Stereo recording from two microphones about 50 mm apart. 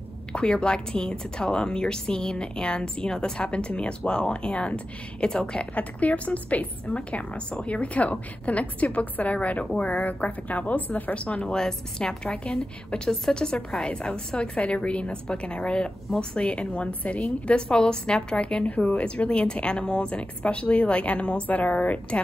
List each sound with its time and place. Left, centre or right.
0.3 s a woman's voice: centre
11.4 s a woman's voice: centre